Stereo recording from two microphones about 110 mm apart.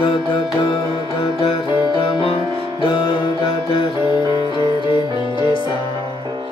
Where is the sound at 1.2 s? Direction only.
55° left (ahead or behind).